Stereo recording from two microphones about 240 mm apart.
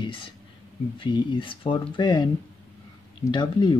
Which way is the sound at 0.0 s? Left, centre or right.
Left.